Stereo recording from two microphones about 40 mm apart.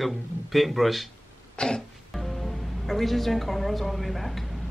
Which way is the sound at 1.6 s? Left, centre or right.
Left.